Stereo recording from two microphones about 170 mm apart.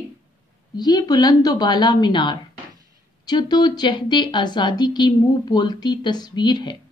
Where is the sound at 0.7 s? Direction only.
25° left (ahead or behind).